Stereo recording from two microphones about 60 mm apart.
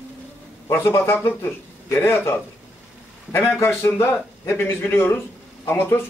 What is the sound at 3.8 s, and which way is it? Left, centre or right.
Speech, left.